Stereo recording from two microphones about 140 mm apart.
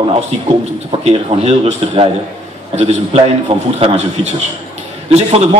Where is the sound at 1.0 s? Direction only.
45° right (ahead or behind).